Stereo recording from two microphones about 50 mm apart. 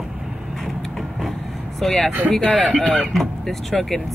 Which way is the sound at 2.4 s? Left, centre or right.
Left.